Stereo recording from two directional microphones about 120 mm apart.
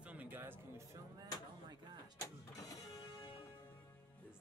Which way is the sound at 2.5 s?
30° left (ahead or behind).